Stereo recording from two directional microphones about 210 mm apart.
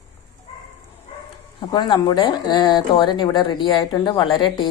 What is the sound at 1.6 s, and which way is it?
Speech, 20° left (ahead or behind).